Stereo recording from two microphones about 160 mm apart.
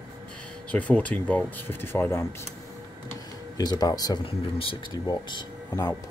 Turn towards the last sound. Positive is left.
turn(degrees=25)  # may be behind; listen again after turning